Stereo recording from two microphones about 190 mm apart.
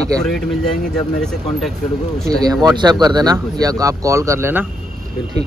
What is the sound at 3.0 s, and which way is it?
Speech, 20° right (ahead or behind).